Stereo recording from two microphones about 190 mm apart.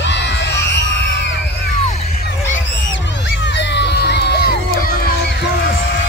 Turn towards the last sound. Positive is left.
turn(degrees=50)  # may be behind; listen again after turning